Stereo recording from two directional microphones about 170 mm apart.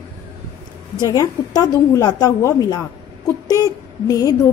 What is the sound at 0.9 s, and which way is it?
A woman's voice, 25° left (ahead or behind).